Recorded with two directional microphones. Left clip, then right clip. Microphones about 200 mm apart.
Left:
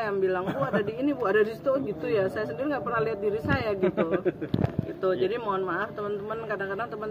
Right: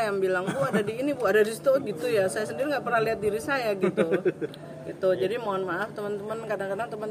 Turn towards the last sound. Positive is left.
turn(degrees=-15)  # may be behind; listen again after turning